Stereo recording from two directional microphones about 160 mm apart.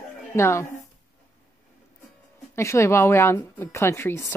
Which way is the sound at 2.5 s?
15° left (ahead or behind).